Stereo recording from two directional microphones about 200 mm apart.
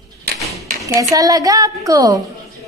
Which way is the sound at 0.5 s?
15° right (ahead or behind).